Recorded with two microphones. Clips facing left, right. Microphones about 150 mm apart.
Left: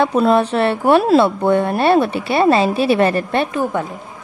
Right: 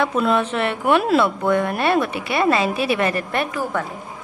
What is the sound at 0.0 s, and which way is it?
A woman's voice, 35° left (ahead or behind).